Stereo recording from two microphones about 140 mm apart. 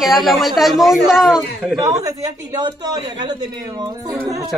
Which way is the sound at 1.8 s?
25° right (ahead or behind).